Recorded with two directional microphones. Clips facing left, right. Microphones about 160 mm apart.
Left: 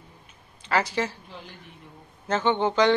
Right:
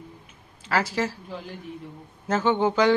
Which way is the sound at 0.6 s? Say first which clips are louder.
Even; centre (ahead or behind).